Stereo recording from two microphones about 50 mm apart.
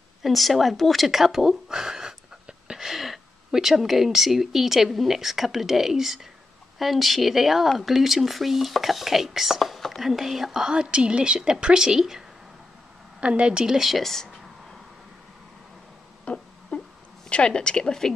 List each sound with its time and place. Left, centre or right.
0.2 s speech: centre
13.2 s a woman's voice: centre
13.7 s speech: centre
16.3 s a sound: left
17.3 s speech: centre